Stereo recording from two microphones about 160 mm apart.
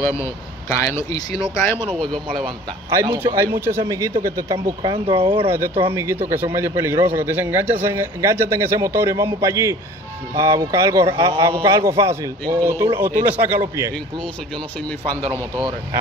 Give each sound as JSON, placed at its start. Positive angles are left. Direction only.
{"t": 0.0, "sound": "speech", "side_deg": 15}
{"t": 2.0, "sound": "speech", "side_deg": 5}
{"t": 2.9, "sound": "a man's voice", "side_deg": -15}
{"t": 4.9, "sound": "speech", "side_deg": -35}
{"t": 5.9, "sound": "a man's voice", "side_deg": -15}